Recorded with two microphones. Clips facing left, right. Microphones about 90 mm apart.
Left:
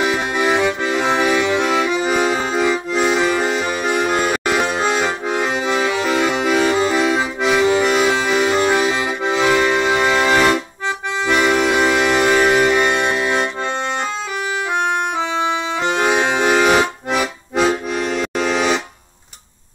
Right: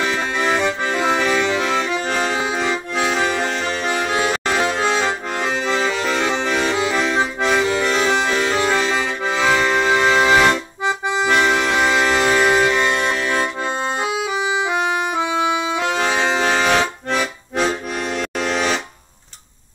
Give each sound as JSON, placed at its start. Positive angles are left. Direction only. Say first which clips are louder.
{"t": 0.0, "sound": "accordion", "louder": "left 2 dB", "side_deg": 10}
{"t": 12.6, "sound": "accordion", "louder": "left 2 dB", "side_deg": 15}
{"t": 13.7, "sound": "accordion", "louder": "even", "side_deg": -10}
{"t": 15.8, "sound": "accordion", "louder": "left 6 dB", "side_deg": 10}